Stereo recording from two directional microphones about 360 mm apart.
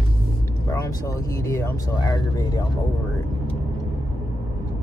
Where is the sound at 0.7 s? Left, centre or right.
Centre.